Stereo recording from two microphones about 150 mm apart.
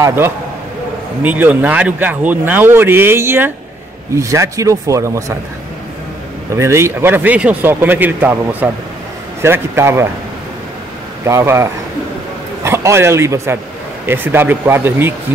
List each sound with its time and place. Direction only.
0.0 s speech: 15° right (ahead or behind)
6.5 s speech: 20° right (ahead or behind)
11.2 s a man's voice: 20° right (ahead or behind)